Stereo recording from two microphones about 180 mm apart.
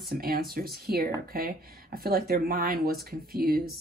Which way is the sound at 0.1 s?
55° right (ahead or behind).